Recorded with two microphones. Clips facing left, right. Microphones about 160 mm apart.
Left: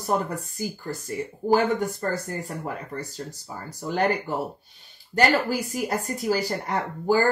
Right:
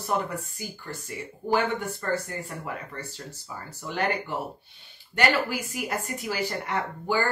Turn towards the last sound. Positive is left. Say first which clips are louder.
# left 5 dB
turn(degrees=40)  # may be behind; listen again after turning